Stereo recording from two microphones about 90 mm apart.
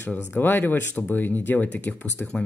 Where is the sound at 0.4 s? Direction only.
20° left (ahead or behind).